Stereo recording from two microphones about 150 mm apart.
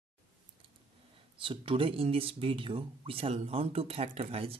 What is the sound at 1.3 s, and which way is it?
Speech, 35° right (ahead or behind).